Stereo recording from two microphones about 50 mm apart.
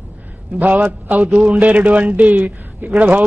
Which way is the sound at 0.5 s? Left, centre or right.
Right.